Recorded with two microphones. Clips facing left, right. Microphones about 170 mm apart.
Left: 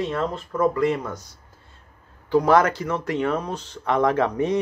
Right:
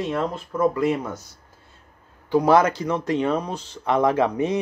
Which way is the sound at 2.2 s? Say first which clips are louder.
Even; 15° right (ahead or behind).